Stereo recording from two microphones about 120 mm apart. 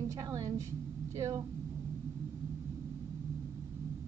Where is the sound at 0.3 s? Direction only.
25° right (ahead or behind).